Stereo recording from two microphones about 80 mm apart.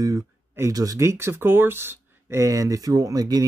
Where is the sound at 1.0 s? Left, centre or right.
Right.